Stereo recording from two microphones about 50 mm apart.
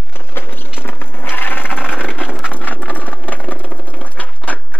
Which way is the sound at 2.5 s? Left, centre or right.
Left.